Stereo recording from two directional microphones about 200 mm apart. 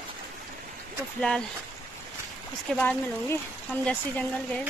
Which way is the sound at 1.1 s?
5° left (ahead or behind).